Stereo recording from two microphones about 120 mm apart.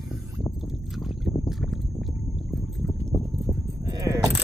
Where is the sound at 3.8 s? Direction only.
35° right (ahead or behind).